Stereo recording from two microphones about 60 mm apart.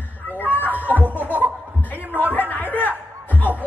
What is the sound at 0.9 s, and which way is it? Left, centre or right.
Chuckle, right.